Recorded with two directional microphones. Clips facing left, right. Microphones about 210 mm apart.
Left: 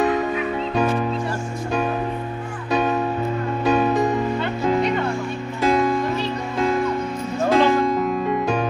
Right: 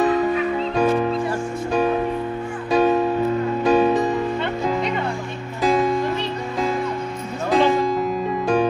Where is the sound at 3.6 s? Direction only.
Centre (ahead or behind).